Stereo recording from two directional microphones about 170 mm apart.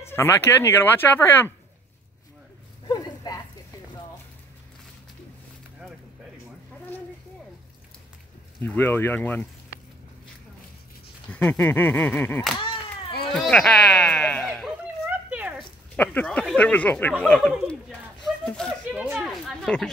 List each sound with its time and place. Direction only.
0.0 s speech: 15° left (ahead or behind)
2.9 s a sound: 20° left (ahead or behind)
8.6 s speech: 10° left (ahead or behind)
11.2 s speech: 10° left (ahead or behind)
12.5 s cat: 30° left (ahead or behind)
13.3 s music: 5° left (ahead or behind)
15.0 s a sound: 10° right (ahead or behind)
16.0 s speech: 10° left (ahead or behind)
18.9 s a sound: 5° right (ahead or behind)
19.1 s speech: centre (ahead or behind)